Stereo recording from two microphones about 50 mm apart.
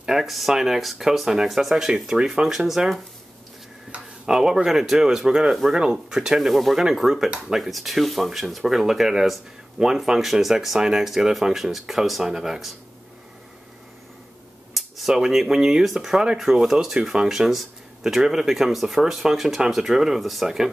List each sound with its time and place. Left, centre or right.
0.0 s speech: centre
2.4 s speech: centre
4.3 s speech: centre
5.8 s speech: centre
15.0 s speech: centre